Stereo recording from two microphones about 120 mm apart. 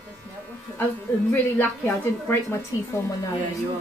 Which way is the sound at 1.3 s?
20° left (ahead or behind).